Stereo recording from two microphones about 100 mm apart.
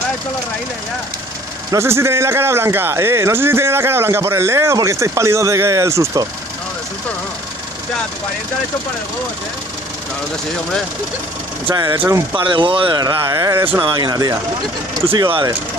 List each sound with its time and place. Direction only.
1.7 s a man's voice: 25° right (ahead or behind)
11.7 s speech: 40° right (ahead or behind)
12.1 s a man's voice: 30° right (ahead or behind)
12.4 s speech: 55° right (ahead or behind)
13.0 s speech: 40° right (ahead or behind)
13.7 s speech: 45° right (ahead or behind)
15.1 s speech: 55° right (ahead or behind)